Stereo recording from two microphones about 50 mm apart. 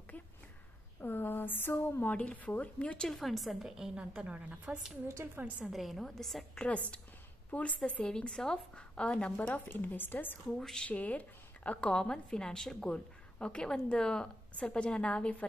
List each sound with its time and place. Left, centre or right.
1.0 s speech: left
2.1 s a woman's voice: left
3.1 s a woman's voice: centre; by 4.8 s right
5.2 s a woman's voice: right
5.7 s a woman's voice: centre
6.6 s a woman's voice: left
8.0 s a woman's voice: centre
9.7 s a woman's voice: left
10.6 s speech: centre
10.9 s a woman's voice: left